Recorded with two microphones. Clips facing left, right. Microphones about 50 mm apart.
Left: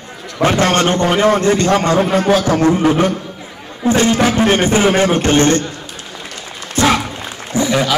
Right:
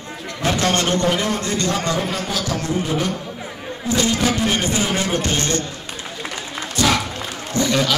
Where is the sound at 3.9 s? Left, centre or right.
Left.